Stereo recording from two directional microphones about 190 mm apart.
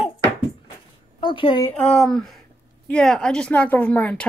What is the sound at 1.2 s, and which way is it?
Speech, 25° left (ahead or behind).